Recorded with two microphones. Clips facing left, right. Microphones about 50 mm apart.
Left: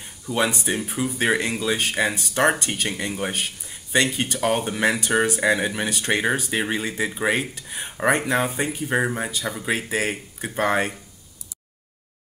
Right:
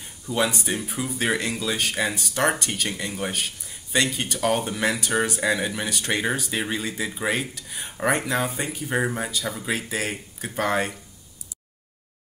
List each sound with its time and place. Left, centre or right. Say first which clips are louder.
0.3 s speech: left 1 dB; centre